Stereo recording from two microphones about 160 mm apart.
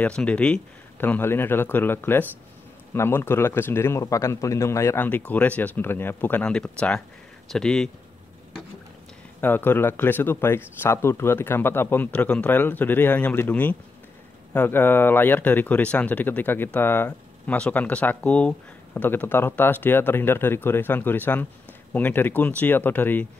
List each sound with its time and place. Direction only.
0.0 s speech: 5° left (ahead or behind)
9.4 s speech: 10° left (ahead or behind)